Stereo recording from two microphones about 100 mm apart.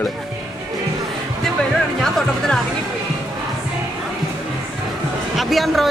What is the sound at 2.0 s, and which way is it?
Speech, 5° left (ahead or behind).